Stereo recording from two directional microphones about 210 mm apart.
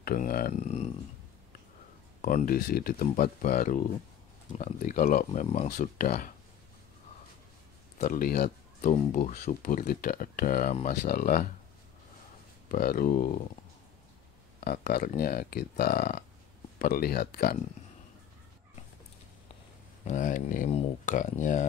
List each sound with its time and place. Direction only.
0.0 s speech: 40° left (ahead or behind)
2.2 s speech: 40° left (ahead or behind)
8.0 s speech: 40° left (ahead or behind)
12.6 s speech: 40° left (ahead or behind)
14.6 s speech: 40° left (ahead or behind)
20.1 s speech: 35° left (ahead or behind)